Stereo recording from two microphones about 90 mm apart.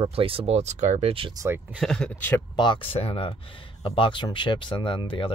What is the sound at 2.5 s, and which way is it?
Speech, 60° left (ahead or behind).